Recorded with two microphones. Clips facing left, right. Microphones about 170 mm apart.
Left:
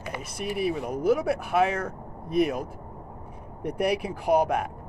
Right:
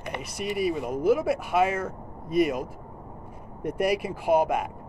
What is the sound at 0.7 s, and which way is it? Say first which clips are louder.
Speech: right 1 dB; centre (ahead or behind).